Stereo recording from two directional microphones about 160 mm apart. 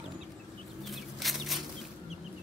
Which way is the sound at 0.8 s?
Centre (ahead or behind).